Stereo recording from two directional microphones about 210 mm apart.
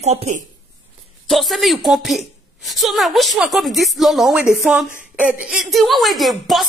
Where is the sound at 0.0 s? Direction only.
30° right (ahead or behind).